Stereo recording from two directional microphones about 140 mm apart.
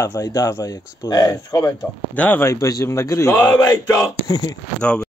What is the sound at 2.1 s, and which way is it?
Speech, 10° left (ahead or behind).